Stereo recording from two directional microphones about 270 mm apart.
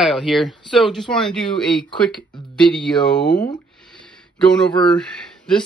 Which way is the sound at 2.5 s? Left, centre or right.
Centre.